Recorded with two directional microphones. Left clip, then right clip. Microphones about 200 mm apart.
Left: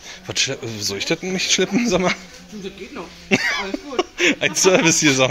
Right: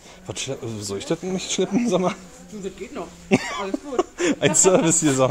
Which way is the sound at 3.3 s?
10° right (ahead or behind).